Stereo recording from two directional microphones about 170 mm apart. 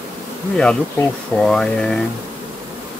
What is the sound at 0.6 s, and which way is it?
Speech, 5° left (ahead or behind).